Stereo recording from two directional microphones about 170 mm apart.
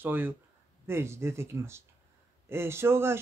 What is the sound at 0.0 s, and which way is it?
Speech, 10° right (ahead or behind).